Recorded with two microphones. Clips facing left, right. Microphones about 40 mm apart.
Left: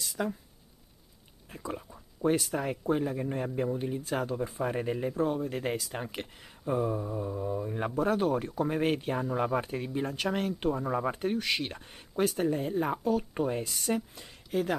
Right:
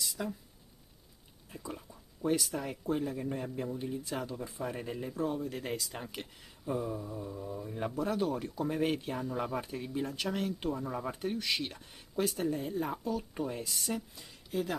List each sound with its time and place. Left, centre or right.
0.2 s speech: left
1.5 s a man's voice: left
14.5 s speech: left